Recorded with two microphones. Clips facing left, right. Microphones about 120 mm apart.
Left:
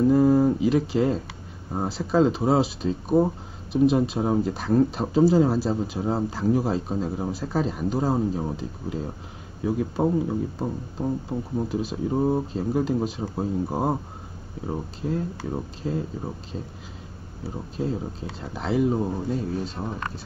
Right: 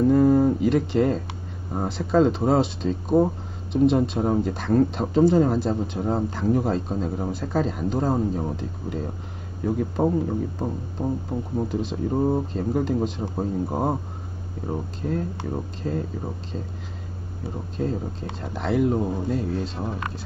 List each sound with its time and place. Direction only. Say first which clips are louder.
0.0 s a sound: right 1 dB; 5° left (ahead or behind)
1.7 s a man's voice: right 1 dB; 5° left (ahead or behind)
3.1 s speech: right 1 dB; 20° right (ahead or behind)
3.7 s a man's voice: right 1 dB; 5° left (ahead or behind)
11.7 s a man's voice: even; 5° left (ahead or behind)
17.8 s a man's voice: right 1 dB; 10° left (ahead or behind)